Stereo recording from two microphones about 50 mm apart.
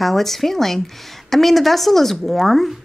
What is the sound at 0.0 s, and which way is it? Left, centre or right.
A woman's voice, centre.